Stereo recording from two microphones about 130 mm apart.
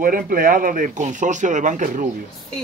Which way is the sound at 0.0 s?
90° right.